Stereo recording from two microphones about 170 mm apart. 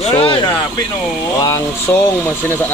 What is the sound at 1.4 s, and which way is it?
Speech, 15° left (ahead or behind).